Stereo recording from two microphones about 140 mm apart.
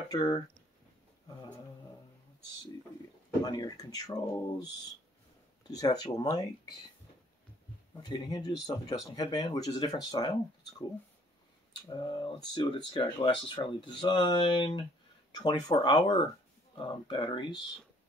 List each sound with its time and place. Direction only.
0.1 s speech: 25° left (ahead or behind)
3.4 s speech: 30° left (ahead or behind)
6.1 s speech: 25° left (ahead or behind)
7.9 s speech: 30° left (ahead or behind)
11.9 s speech: 35° left (ahead or behind)